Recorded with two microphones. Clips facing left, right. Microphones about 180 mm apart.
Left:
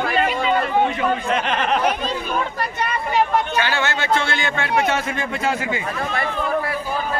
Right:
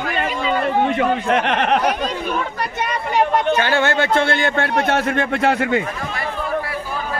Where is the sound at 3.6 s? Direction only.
50° right (ahead or behind).